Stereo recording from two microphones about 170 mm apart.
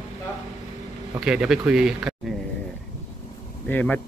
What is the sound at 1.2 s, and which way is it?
A man's voice, 5° right (ahead or behind).